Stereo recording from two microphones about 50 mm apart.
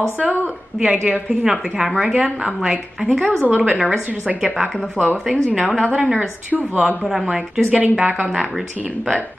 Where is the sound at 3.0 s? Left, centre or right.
Right.